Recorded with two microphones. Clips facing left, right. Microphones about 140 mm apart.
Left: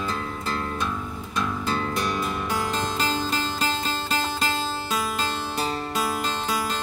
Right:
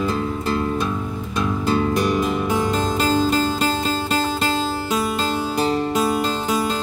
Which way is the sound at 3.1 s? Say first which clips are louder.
Right 9 dB; 40° right (ahead or behind).